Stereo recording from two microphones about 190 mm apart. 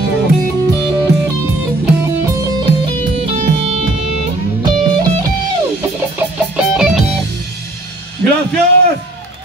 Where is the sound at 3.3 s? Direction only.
35° right (ahead or behind).